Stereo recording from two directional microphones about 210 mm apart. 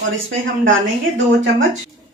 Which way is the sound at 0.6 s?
60° right (ahead or behind).